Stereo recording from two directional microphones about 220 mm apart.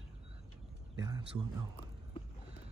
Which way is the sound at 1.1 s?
15° right (ahead or behind).